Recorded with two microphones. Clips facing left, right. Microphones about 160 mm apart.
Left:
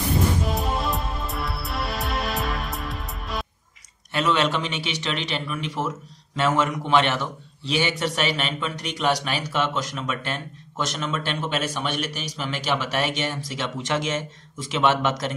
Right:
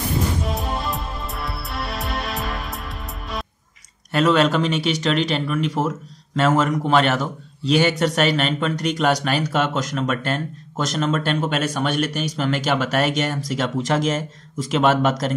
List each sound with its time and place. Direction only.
0.4 s music: centre (ahead or behind)
4.1 s speech: 40° right (ahead or behind)